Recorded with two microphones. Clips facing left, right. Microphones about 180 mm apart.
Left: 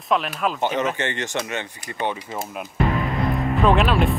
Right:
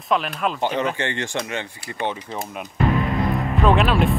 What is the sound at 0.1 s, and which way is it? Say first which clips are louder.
Speech: even; centre (ahead or behind).